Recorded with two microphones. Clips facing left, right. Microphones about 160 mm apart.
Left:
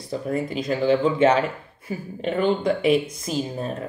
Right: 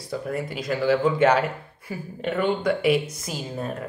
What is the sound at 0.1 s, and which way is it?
A woman's voice, 30° left (ahead or behind).